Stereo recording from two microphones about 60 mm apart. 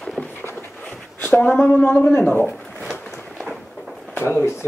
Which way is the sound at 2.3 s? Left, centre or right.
Left.